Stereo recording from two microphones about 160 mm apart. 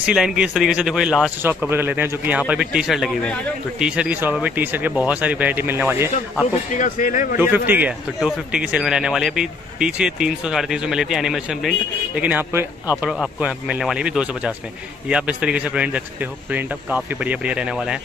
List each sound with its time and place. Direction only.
0.0 s speech: 5° right (ahead or behind)
6.8 s speech: 50° left (ahead or behind)
7.3 s speech: 10° right (ahead or behind)